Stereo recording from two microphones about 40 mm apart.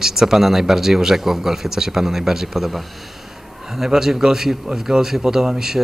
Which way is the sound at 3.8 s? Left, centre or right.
Centre.